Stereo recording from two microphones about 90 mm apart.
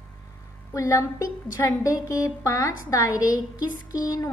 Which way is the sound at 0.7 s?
35° left (ahead or behind).